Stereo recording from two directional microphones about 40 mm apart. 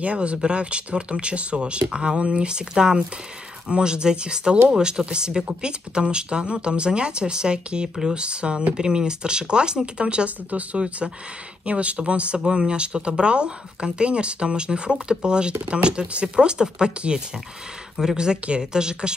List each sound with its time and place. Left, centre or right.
0.0 s speech: right